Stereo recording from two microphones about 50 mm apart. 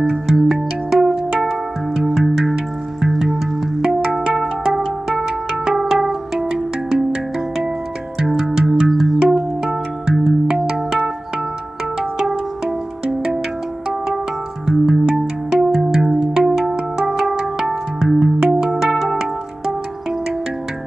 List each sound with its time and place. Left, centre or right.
0.0 s music: centre
1.4 s music: centre
12.0 s music: centre
14.7 s music: centre